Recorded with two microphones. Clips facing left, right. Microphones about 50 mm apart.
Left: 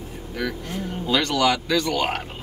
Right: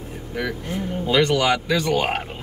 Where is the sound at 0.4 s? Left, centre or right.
Centre.